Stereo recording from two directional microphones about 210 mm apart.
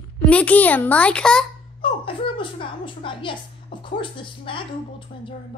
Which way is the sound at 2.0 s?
25° left (ahead or behind).